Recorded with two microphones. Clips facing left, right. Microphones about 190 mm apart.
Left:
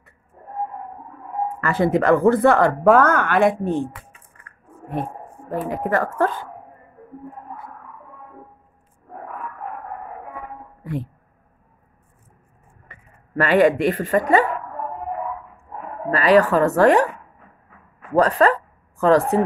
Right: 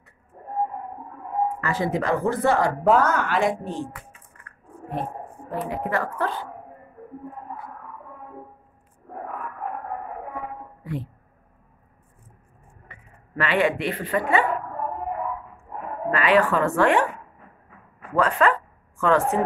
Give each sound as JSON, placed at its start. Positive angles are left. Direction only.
{"t": 1.6, "sound": "speech", "side_deg": 55}
{"t": 5.7, "sound": "speech", "side_deg": 45}
{"t": 10.8, "sound": "music", "side_deg": 50}
{"t": 12.9, "sound": "a sound", "side_deg": 45}
{"t": 13.4, "sound": "speech", "side_deg": 40}
{"t": 16.1, "sound": "speech", "side_deg": 40}
{"t": 18.1, "sound": "speech", "side_deg": 35}